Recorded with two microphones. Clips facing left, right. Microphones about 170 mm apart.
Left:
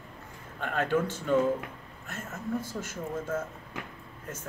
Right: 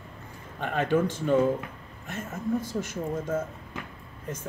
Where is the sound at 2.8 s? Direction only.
15° right (ahead or behind).